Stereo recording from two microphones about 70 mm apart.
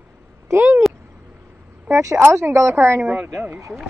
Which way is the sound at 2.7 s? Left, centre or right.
Right.